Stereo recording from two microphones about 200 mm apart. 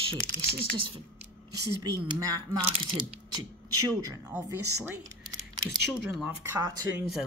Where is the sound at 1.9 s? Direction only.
15° right (ahead or behind).